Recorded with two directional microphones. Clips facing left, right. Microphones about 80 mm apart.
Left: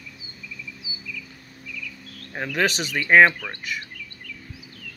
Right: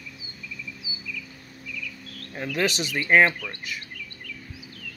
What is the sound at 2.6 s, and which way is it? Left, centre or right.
Speech, left.